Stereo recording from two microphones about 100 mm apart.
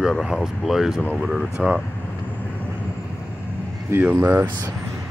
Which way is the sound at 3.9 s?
15° right (ahead or behind).